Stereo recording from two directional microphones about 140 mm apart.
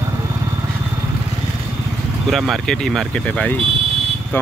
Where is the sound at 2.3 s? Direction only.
Centre (ahead or behind).